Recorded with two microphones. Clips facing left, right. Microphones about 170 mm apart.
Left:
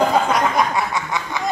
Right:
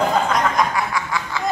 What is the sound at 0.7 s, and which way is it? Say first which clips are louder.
Snicker: left 1 dB; 20° left (ahead or behind).